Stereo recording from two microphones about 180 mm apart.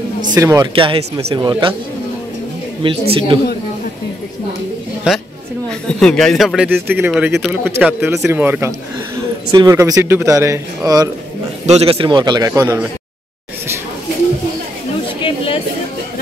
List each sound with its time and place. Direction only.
0.3 s speech: 15° right (ahead or behind)
0.7 s a man's voice: 30° right (ahead or behind)
2.8 s a man's voice: 30° right (ahead or behind)
5.7 s a man's voice: 5° left (ahead or behind); by 11.0 s 20° right (ahead or behind)
11.6 s a man's voice: 35° right (ahead or behind); by 12.8 s 15° right (ahead or behind)
15.2 s chatter: 30° left (ahead or behind)